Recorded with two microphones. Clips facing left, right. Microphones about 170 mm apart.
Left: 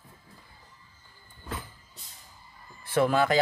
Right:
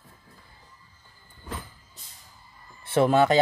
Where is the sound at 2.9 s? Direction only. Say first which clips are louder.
Right 4 dB; 25° right (ahead or behind).